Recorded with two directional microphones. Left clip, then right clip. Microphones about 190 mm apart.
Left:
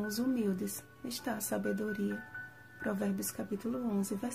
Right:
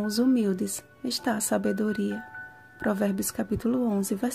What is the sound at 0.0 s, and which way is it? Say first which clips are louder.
Speech: right 9 dB; 35° right (ahead or behind).